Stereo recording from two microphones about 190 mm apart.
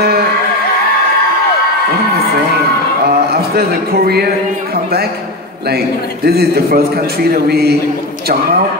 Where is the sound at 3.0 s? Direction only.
55° right (ahead or behind).